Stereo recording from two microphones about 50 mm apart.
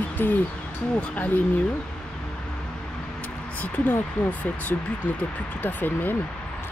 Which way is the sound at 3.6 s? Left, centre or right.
Left.